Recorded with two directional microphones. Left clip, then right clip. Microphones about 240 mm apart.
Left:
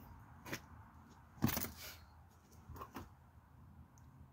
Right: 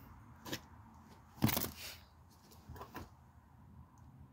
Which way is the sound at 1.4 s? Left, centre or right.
Right.